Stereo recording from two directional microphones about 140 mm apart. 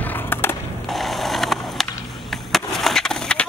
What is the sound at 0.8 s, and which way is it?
Ratchet, centre (ahead or behind).